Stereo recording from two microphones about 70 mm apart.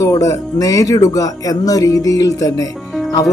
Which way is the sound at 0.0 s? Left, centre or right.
Left.